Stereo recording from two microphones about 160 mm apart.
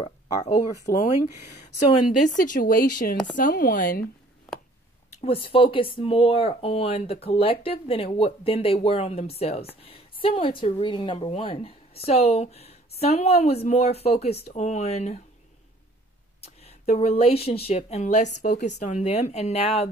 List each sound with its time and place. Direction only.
0.9 s speech: 50° left (ahead or behind)
5.1 s speech: 35° left (ahead or behind)
16.3 s speech: 40° left (ahead or behind)